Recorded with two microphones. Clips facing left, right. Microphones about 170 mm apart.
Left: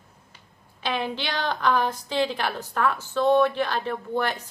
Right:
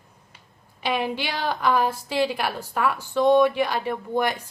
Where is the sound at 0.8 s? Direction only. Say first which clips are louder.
Right 3 dB; 10° right (ahead or behind).